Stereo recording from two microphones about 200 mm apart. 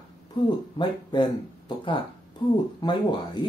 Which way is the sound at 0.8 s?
20° left (ahead or behind).